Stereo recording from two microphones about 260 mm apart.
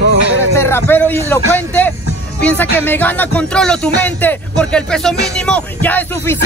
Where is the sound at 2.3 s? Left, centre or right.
Centre.